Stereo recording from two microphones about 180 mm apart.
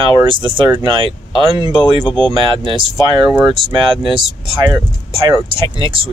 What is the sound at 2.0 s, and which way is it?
Speech, 25° left (ahead or behind).